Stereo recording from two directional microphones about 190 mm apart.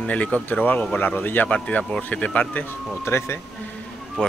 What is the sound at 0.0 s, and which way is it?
Speech, 5° left (ahead or behind).